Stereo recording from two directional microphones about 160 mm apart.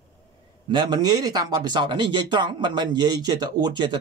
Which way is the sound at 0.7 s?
25° right (ahead or behind).